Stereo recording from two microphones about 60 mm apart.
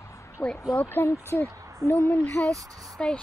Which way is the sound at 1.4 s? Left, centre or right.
Left.